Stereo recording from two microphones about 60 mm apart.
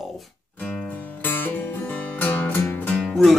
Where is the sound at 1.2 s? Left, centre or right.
Left.